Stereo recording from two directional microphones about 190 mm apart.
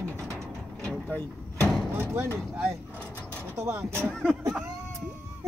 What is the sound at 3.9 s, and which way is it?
Speech, 5° left (ahead or behind).